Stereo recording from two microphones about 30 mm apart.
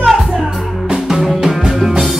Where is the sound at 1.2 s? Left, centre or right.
Centre.